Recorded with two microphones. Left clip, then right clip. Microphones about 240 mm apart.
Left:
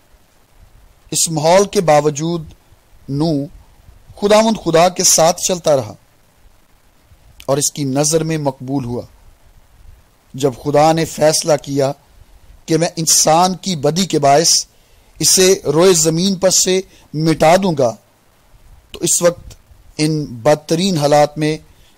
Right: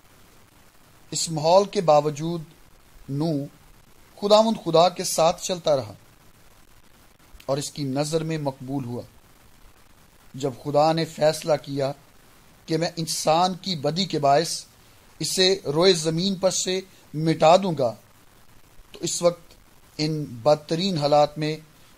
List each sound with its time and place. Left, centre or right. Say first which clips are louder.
1.1 s speech: left 7 dB; left
7.3 s speech: left 10 dB; left
10.3 s speech: left 9 dB; left